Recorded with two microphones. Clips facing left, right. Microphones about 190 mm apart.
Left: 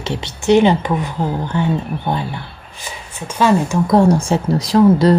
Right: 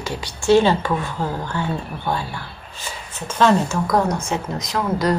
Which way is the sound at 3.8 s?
30° left (ahead or behind).